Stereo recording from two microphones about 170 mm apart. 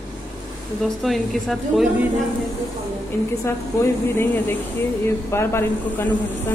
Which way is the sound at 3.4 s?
15° left (ahead or behind).